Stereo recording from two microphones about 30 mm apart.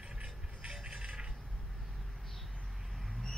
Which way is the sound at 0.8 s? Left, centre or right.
Right.